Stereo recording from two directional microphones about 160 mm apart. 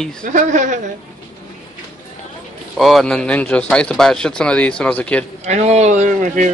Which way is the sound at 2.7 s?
Centre (ahead or behind).